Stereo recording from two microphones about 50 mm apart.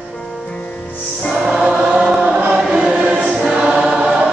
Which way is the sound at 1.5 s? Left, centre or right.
Centre.